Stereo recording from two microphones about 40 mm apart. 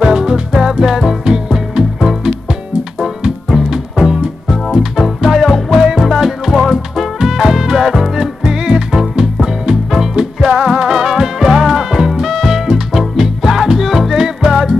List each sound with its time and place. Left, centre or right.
0.0 s music: centre
3.0 s music: centre